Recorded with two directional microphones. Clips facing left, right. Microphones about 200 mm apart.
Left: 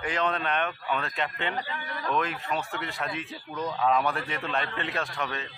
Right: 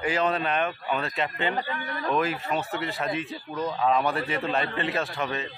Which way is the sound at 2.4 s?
40° right (ahead or behind).